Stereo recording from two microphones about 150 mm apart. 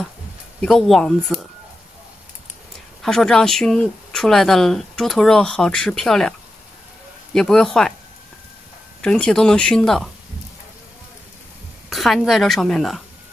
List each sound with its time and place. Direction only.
0.6 s speech: centre (ahead or behind)
3.0 s speech: 5° left (ahead or behind)
7.3 s speech: 5° left (ahead or behind)
9.0 s speech: 5° left (ahead or behind)
11.9 s speech: centre (ahead or behind)